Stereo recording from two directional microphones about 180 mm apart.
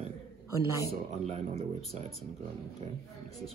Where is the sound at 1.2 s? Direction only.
40° right (ahead or behind).